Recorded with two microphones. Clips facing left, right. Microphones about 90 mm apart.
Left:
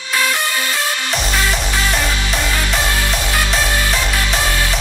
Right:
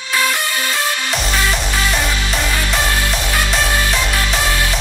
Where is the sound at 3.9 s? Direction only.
Centre (ahead or behind).